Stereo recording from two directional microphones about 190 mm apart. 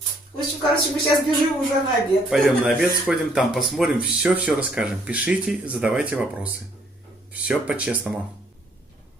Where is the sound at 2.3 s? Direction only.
Centre (ahead or behind).